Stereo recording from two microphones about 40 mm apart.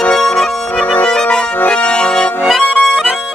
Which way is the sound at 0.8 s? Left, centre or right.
Left.